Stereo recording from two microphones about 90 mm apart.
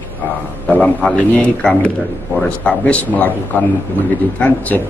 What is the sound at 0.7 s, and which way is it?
Speech, 15° left (ahead or behind).